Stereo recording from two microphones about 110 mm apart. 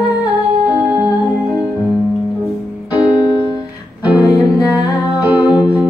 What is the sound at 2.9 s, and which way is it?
Keyboard, 40° left (ahead or behind).